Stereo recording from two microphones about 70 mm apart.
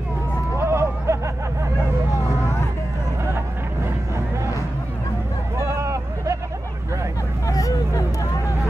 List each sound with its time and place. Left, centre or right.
0.6 s a sound: right
5.6 s vehicle: right
7.4 s hubbub: left